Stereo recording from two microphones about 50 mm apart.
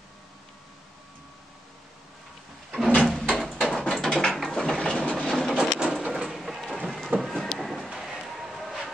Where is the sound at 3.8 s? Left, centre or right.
Centre.